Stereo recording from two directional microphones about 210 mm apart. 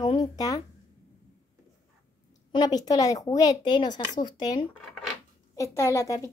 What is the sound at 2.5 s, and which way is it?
Speech, 20° left (ahead or behind).